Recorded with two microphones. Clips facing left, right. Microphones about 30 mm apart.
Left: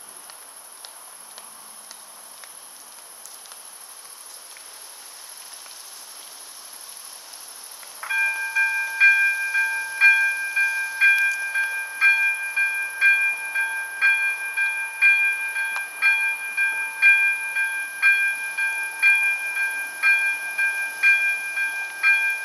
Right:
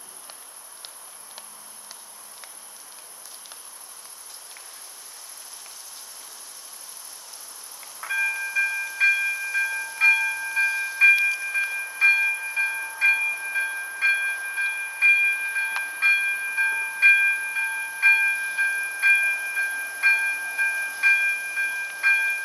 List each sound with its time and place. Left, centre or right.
8.0 s wind chime: centre
10.0 s train: centre
10.6 s wind chime: centre
11.1 s wind chime: centre
11.4 s train: centre